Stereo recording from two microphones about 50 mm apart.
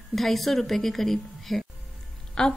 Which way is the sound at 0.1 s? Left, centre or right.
Centre.